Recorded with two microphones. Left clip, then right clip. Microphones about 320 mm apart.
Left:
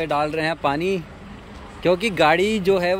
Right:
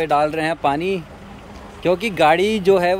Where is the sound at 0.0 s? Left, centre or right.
Centre.